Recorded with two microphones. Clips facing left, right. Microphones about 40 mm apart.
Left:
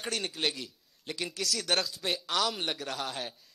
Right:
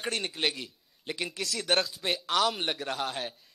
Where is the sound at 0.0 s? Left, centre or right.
Centre.